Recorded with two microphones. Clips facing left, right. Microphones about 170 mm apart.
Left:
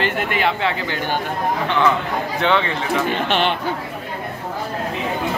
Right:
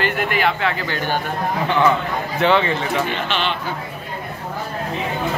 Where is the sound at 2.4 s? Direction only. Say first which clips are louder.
Right 3 dB; centre (ahead or behind).